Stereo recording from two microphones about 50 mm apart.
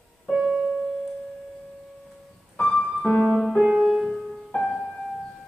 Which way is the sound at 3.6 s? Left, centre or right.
Centre.